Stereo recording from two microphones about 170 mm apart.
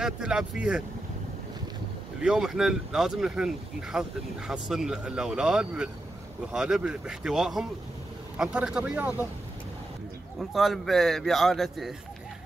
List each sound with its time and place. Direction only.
0.0 s speech: 5° right (ahead or behind)
2.2 s speech: 5° right (ahead or behind)
10.5 s speech: centre (ahead or behind)